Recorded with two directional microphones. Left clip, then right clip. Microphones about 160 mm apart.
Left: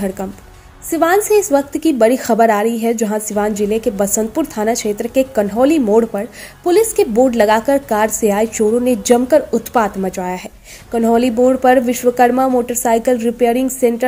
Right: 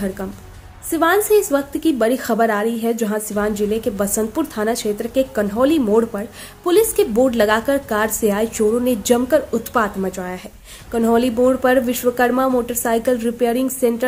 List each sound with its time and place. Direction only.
0.9 s a woman's voice: 15° left (ahead or behind)